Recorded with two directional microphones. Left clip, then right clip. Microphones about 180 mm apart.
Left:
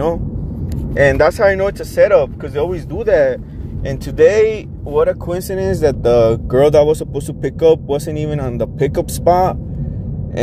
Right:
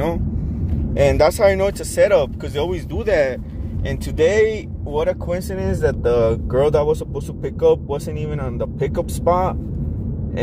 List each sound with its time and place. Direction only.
0.9 s speech: 5° left (ahead or behind)
5.3 s speech: 75° left (ahead or behind); by 9.6 s 60° left (ahead or behind)